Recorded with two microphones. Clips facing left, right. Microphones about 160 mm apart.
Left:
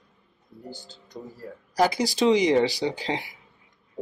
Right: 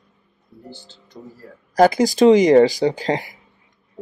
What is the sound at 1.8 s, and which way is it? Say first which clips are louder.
Speech: right 8 dB; 50° right (ahead or behind).